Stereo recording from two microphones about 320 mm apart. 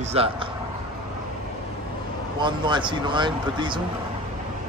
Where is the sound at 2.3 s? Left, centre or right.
Centre.